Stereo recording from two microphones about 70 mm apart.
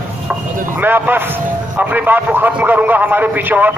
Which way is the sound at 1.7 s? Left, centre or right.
Right.